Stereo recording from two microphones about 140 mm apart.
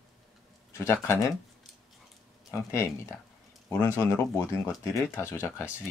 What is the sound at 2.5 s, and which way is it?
Speech, 20° left (ahead or behind).